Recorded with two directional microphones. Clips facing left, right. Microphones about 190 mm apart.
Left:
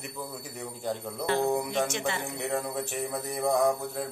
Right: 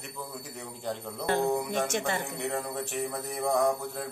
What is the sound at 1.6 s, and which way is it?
Music, 50° right (ahead or behind).